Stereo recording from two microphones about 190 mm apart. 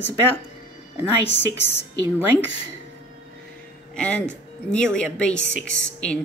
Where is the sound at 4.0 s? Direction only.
5° left (ahead or behind).